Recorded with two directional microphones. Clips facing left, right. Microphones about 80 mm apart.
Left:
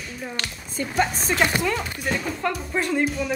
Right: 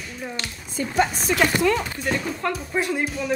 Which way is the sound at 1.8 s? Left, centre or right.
Centre.